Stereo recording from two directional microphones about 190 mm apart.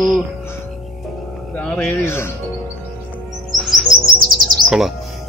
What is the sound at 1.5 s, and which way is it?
Speech, centre (ahead or behind).